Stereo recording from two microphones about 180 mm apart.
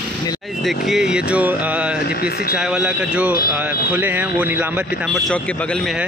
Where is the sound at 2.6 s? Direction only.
5° right (ahead or behind).